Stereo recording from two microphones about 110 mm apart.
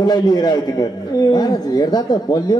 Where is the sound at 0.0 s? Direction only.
40° left (ahead or behind).